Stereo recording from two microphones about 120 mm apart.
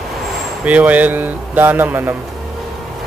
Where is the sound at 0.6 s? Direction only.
10° right (ahead or behind).